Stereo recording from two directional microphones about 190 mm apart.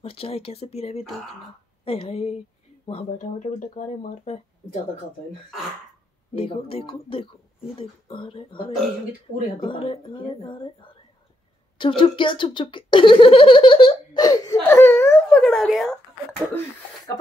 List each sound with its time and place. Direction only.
0.0 s speech: 30° left (ahead or behind)
6.3 s speech: 30° left (ahead or behind); by 16.6 s 5° left (ahead or behind)